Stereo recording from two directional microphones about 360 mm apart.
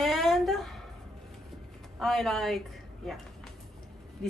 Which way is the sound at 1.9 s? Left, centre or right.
Centre.